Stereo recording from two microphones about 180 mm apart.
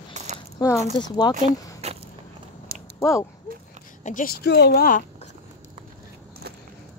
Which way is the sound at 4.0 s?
45° left (ahead or behind).